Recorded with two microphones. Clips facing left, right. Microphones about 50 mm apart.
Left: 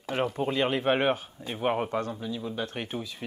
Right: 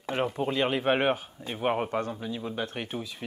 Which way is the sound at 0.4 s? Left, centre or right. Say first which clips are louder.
Left 1 dB; centre.